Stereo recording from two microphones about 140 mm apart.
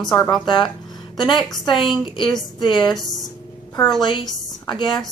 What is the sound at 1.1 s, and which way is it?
A woman's voice, 30° left (ahead or behind).